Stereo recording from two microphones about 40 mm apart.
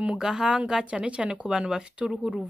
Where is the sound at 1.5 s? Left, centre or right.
Centre.